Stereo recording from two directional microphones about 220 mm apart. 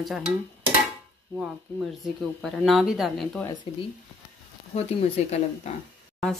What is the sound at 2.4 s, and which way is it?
Speech, centre (ahead or behind).